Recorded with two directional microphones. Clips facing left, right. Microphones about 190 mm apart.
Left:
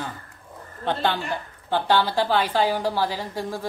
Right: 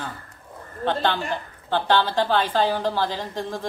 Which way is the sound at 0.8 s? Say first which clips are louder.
Right 1 dB; 10° left (ahead or behind).